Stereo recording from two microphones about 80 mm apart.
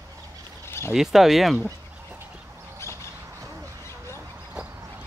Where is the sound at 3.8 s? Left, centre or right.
Left.